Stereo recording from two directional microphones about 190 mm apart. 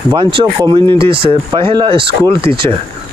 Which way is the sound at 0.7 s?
25° right (ahead or behind).